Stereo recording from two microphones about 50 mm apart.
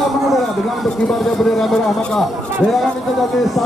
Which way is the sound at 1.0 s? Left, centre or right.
Centre.